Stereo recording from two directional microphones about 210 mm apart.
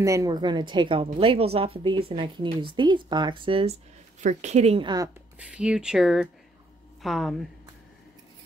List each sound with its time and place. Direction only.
0.0 s a woman's voice: 15° right (ahead or behind)
4.2 s speech: 35° right (ahead or behind); by 5.1 s 20° right (ahead or behind)
5.4 s speech: 5° right (ahead or behind)